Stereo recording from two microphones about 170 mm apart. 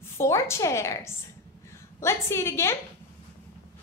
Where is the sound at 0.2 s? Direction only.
15° left (ahead or behind).